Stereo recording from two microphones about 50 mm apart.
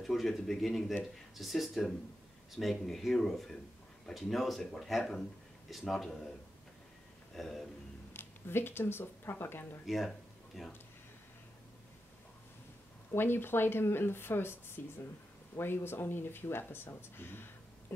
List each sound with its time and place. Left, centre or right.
0.0 s speech: centre
7.3 s speech: centre
8.1 s speech: left
9.8 s speech: centre
13.1 s speech: left
15.6 s speech: left